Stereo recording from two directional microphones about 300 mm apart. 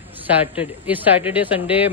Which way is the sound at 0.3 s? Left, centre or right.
Centre.